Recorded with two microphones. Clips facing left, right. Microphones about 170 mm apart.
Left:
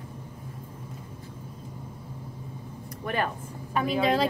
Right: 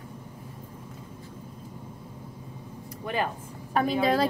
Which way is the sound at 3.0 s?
20° right (ahead or behind).